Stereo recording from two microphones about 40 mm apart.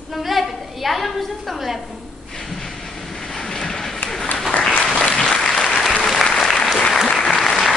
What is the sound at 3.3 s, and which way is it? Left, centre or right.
Train, centre.